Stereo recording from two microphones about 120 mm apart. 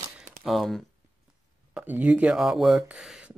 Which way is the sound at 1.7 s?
15° right (ahead or behind).